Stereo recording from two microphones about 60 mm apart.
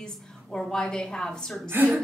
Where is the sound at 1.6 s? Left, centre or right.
Right.